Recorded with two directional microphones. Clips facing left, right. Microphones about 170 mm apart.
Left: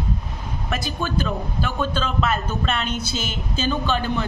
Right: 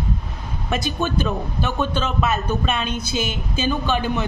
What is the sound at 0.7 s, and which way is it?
A man's voice, 20° right (ahead or behind).